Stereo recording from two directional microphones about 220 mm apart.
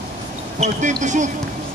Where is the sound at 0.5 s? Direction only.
30° right (ahead or behind).